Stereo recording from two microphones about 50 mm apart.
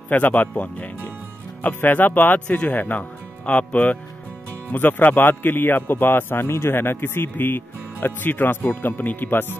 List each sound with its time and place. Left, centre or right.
0.1 s a man's voice: left
2.4 s a man's voice: left